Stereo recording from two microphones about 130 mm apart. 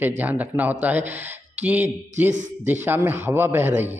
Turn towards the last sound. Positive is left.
turn(degrees=-15)  # may be behind; listen again after turning